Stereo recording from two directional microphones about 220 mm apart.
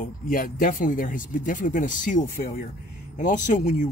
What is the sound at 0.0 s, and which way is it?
Speech, 40° left (ahead or behind).